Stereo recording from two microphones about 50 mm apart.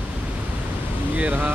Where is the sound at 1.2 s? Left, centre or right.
Right.